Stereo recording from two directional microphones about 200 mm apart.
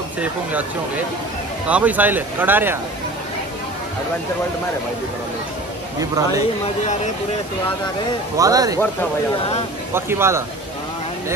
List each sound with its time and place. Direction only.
0.2 s speech: 5° right (ahead or behind)
1.7 s speech: 5° right (ahead or behind)
5.9 s speech: 15° right (ahead or behind)
8.4 s speech: 15° right (ahead or behind)
9.9 s speech: 10° right (ahead or behind)